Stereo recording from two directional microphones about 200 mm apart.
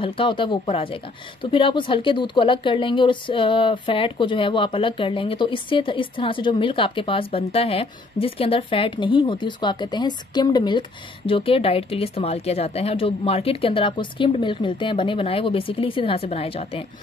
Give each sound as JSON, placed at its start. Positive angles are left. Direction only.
{"t": 0.0, "sound": "speech", "side_deg": 25}